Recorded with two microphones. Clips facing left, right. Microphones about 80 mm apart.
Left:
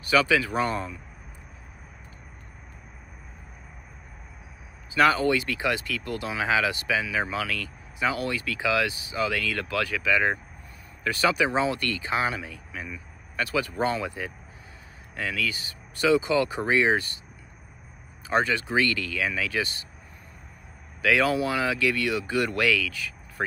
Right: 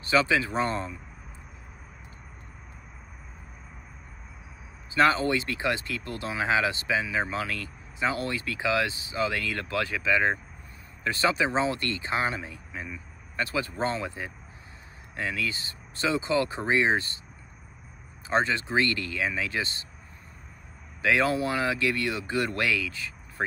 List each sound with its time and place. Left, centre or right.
0.0 s speech: right
4.9 s speech: right
18.3 s speech: right
21.0 s speech: right